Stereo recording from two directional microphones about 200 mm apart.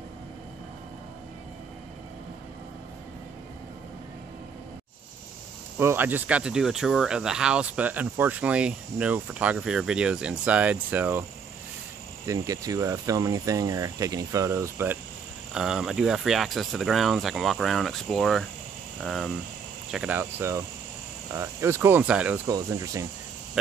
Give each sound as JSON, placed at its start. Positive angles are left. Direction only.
{"t": 5.8, "sound": "speech", "side_deg": -10}
{"t": 12.3, "sound": "speech", "side_deg": -15}
{"t": 22.5, "sound": "speech", "side_deg": -15}